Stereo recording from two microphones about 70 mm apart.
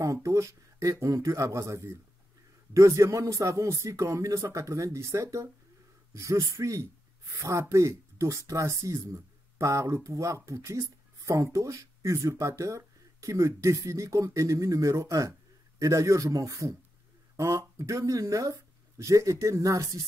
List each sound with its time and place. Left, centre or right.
0.0 s speech: right